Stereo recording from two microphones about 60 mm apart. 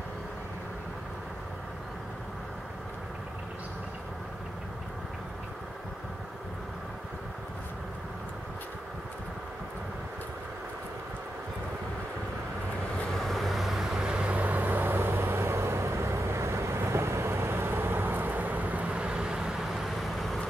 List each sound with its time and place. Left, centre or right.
13.1 s vehicle: centre
14.3 s vehicle: right; by 20.3 s centre